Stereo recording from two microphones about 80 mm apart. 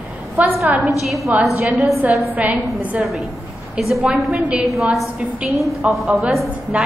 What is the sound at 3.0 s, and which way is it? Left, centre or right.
Speech, centre.